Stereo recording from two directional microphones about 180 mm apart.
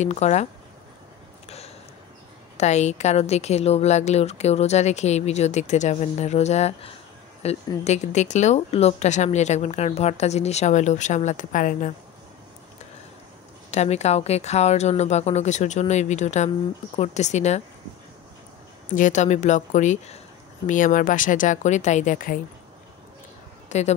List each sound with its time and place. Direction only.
0.0 s a woman's voice: 40° left (ahead or behind)
2.5 s a woman's voice: 40° left (ahead or behind)
13.7 s a woman's voice: 40° left (ahead or behind)
18.9 s a woman's voice: 45° left (ahead or behind)
23.7 s a woman's voice: 40° left (ahead or behind)